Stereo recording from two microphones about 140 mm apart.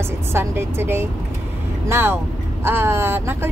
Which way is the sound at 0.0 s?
20° right (ahead or behind).